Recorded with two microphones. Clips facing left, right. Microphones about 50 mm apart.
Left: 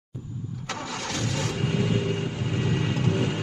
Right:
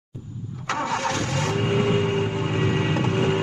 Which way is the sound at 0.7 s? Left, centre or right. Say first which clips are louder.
Right 9 dB; right.